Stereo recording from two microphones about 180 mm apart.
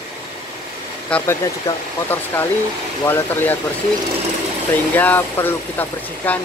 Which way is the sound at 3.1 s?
10° left (ahead or behind).